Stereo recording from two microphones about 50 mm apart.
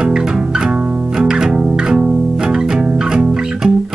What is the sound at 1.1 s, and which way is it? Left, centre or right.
Music, centre.